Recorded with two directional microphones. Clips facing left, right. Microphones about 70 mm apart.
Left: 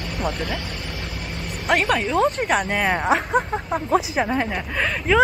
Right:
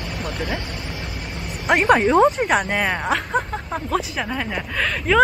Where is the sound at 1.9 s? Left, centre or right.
Right.